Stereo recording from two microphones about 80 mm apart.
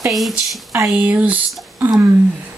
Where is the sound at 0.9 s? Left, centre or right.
Centre.